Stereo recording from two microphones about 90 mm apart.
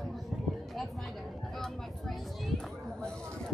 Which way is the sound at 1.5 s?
5° left (ahead or behind).